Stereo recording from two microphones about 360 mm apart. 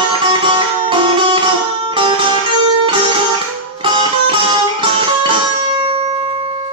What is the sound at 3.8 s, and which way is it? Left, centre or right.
Music, centre.